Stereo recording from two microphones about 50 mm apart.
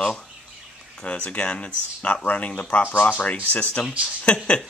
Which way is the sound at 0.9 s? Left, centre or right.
Left.